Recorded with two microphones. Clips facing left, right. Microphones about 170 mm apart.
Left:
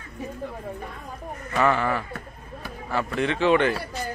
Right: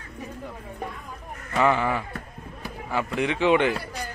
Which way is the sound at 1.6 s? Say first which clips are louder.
Even; 15° right (ahead or behind).